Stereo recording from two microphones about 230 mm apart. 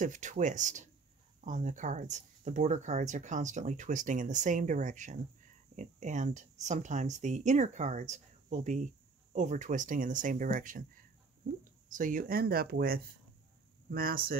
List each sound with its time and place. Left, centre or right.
0.0 s speech: right